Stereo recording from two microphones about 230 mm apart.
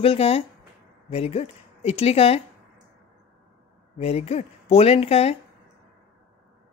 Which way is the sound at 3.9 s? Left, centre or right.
Left.